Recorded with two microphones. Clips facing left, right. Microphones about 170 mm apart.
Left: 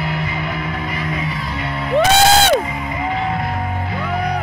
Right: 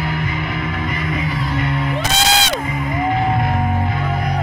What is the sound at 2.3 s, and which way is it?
Music, 50° left (ahead or behind).